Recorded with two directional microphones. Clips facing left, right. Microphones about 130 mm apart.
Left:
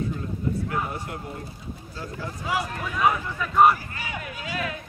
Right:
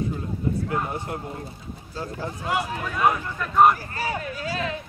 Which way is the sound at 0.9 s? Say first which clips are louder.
Right 3 dB; 25° right (ahead or behind).